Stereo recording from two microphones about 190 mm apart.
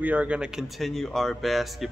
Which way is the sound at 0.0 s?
5° right (ahead or behind).